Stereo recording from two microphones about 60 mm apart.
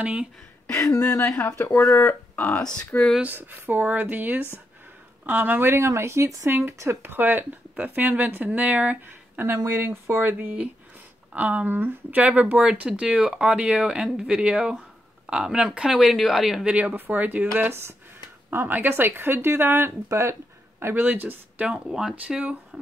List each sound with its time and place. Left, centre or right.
0.0 s speech: centre
0.7 s speech: left
1.8 s speech: left
3.3 s speech: right
7.1 s speech: right
9.4 s speech: right
11.3 s speech: right; by 16.6 s centre
16.6 s speech: right
17.6 s speech: right
20.8 s speech: right
21.6 s speech: centre
22.3 s speech: right